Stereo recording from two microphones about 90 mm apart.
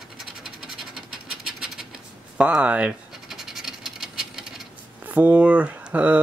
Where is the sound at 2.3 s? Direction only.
15° right (ahead or behind).